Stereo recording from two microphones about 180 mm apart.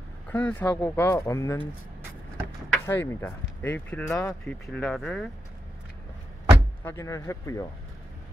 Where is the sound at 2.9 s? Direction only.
15° left (ahead or behind).